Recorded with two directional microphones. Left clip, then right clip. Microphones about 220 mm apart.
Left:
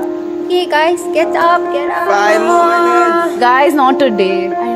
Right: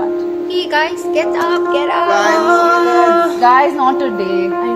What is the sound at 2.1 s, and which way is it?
Music, 50° left (ahead or behind).